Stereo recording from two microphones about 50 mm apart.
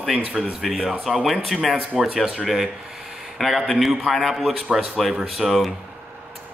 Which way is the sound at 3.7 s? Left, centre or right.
Centre.